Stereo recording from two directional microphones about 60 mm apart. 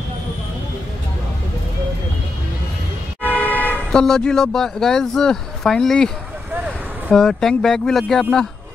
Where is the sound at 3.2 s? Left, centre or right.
Left.